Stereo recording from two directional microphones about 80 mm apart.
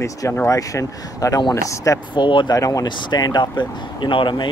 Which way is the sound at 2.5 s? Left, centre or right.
Left.